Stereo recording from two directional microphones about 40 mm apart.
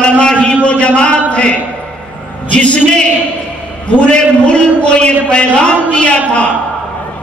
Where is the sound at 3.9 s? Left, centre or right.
Left.